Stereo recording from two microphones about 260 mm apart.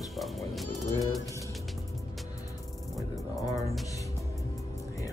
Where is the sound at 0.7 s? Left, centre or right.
Left.